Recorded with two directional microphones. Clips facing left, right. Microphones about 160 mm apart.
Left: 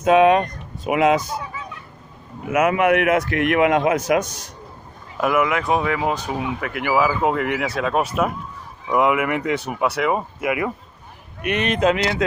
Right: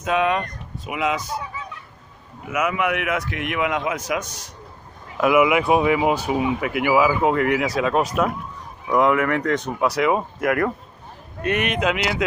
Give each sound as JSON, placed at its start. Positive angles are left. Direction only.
{"t": 0.0, "sound": "speech", "side_deg": 45}
{"t": 2.8, "sound": "speech", "side_deg": 35}
{"t": 3.5, "sound": "speech", "side_deg": 50}
{"t": 5.1, "sound": "speech", "side_deg": -5}
{"t": 11.4, "sound": "speech", "side_deg": 25}
{"t": 11.7, "sound": "speech", "side_deg": 35}